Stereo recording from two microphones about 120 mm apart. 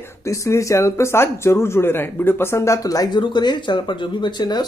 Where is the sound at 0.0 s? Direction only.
25° left (ahead or behind).